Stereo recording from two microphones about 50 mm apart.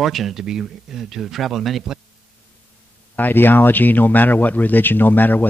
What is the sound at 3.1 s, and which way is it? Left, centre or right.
Speech, left.